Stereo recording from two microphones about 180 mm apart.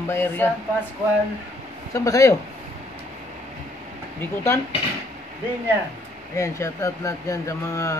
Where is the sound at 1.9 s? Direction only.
20° left (ahead or behind).